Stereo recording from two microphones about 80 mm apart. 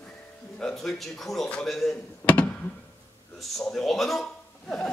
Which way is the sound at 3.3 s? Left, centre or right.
Centre.